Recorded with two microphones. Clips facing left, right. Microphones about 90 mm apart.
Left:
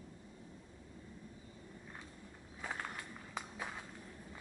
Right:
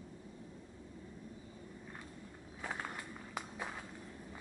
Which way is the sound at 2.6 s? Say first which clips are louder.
Right 1 dB; 5° right (ahead or behind).